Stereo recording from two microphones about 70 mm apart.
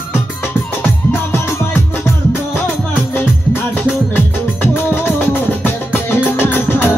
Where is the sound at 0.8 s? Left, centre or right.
Left.